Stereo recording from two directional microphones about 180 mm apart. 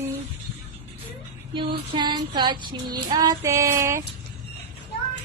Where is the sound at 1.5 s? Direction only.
25° right (ahead or behind).